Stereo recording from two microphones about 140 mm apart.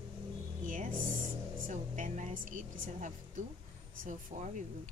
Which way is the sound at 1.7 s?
65° right (ahead or behind).